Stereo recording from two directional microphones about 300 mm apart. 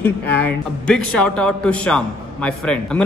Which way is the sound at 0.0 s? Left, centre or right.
Centre.